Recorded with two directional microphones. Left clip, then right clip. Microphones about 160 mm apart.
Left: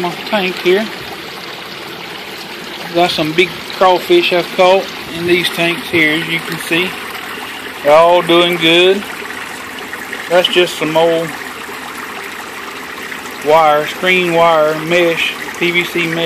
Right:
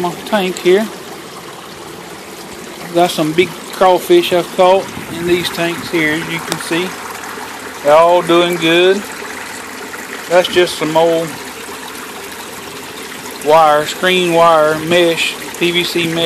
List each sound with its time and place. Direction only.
0.0 s speech: 25° right (ahead or behind)
3.0 s speech: 20° right (ahead or behind)
4.6 s speech: 5° right (ahead or behind)
10.3 s speech: 5° right (ahead or behind)
13.5 s speech: 10° right (ahead or behind)